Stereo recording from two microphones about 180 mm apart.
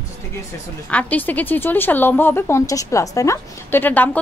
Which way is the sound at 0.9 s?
10° left (ahead or behind).